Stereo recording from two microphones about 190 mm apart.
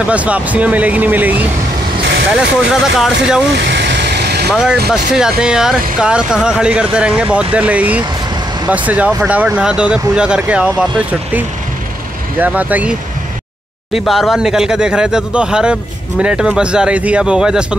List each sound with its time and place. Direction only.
0.1 s speech: 5° right (ahead or behind)
3.5 s vehicle: 65° right (ahead or behind)
4.5 s speech: 5° right (ahead or behind)
13.9 s speech: centre (ahead or behind)